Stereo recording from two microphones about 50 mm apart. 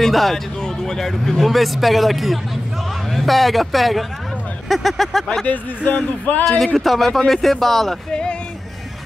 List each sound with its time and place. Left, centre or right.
0.0 s speech: centre
5.9 s speech: left
6.6 s speech: centre
8.1 s speech: centre